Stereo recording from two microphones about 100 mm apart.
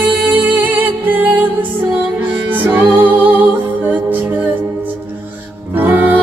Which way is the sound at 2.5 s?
20° right (ahead or behind).